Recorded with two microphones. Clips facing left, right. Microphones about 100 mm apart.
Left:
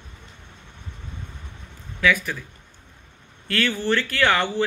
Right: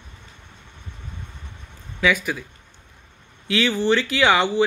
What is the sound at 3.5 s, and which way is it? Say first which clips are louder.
A man's voice: right 3 dB; 15° right (ahead or behind).